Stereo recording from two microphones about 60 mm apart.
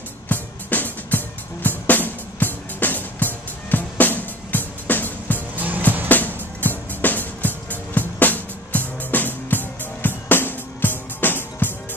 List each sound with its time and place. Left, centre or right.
0.3 s music: left